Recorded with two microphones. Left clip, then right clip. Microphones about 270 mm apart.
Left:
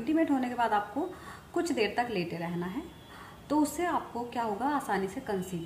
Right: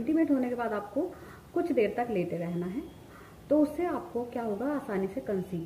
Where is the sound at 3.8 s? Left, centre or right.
Centre.